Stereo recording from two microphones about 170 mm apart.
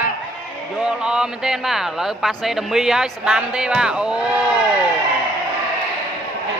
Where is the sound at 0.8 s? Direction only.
5° right (ahead or behind).